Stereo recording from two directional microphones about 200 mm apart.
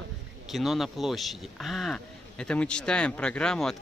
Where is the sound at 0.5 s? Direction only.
Centre (ahead or behind).